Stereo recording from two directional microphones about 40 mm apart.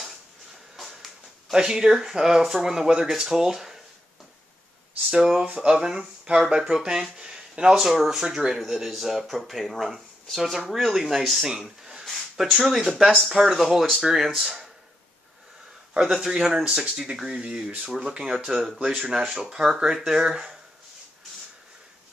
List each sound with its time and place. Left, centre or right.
0.7 s a sound: centre
1.5 s speech: centre
5.1 s speech: centre
5.4 s speech: right
6.3 s speech: right
6.7 s speech: centre
7.7 s speech: centre
15.9 s speech: centre
17.4 s speech: right
17.8 s speech: centre